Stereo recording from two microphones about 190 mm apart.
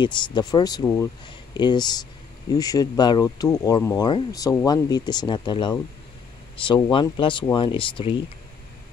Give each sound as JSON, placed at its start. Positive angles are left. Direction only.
{"t": 0.0, "sound": "speech", "side_deg": 20}